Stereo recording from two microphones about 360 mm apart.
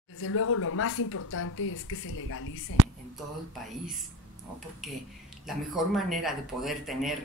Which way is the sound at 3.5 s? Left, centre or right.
Centre.